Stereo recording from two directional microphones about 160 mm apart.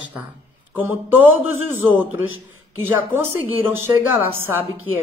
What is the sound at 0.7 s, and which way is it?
Speech, 15° right (ahead or behind).